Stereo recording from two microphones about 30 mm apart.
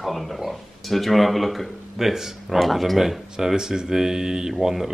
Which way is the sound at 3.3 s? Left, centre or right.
Centre.